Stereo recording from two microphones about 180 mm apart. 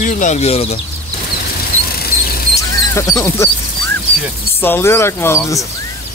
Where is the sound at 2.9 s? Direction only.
15° left (ahead or behind).